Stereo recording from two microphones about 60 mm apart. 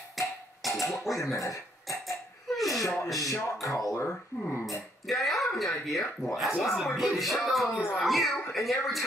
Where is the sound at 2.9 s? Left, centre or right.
Centre.